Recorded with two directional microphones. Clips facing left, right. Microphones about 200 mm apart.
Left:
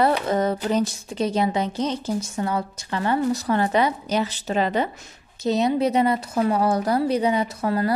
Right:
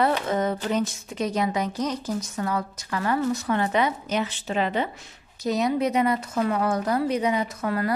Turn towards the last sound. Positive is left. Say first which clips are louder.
# left 3 dB
turn(degrees=30)  # may be behind; listen again after turning